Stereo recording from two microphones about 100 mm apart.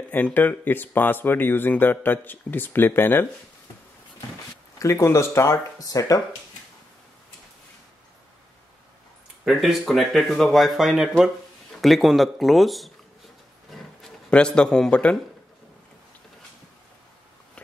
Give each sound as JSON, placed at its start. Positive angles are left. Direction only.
{"t": 0.1, "sound": "speech", "side_deg": 15}
{"t": 4.7, "sound": "speech", "side_deg": 30}
{"t": 9.4, "sound": "speech", "side_deg": 0}
{"t": 13.7, "sound": "a sound", "side_deg": 5}